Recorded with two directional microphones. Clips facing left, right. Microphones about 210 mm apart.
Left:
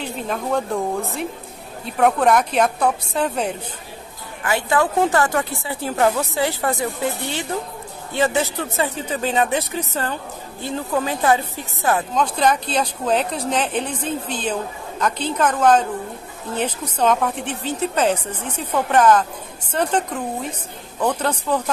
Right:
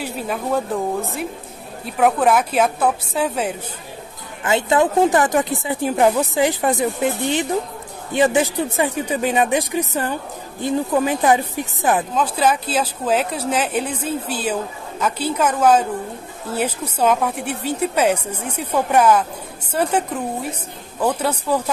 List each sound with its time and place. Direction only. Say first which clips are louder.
0.0 s a woman's voice: right 1 dB; 5° right (ahead or behind)
4.4 s speech: right 3 dB; 20° right (ahead or behind)
12.1 s speech: even; 5° right (ahead or behind)